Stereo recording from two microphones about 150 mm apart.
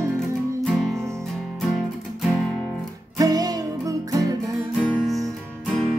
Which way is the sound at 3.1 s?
25° right (ahead or behind).